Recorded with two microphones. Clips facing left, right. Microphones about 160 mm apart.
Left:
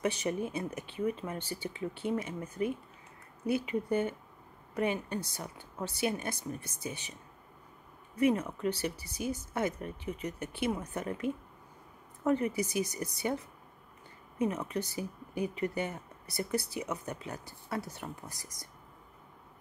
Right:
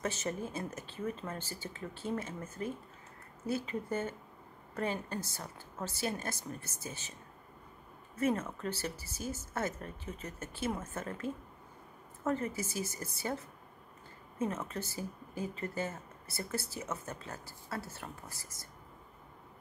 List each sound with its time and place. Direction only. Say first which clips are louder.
0.0 s speech: left 4 dB; 15° left (ahead or behind)
8.2 s speech: left 4 dB; 15° left (ahead or behind)
14.7 s speech: left 4 dB; 15° left (ahead or behind)